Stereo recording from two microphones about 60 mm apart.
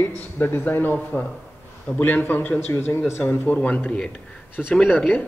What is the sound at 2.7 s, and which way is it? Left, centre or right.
Speech, left.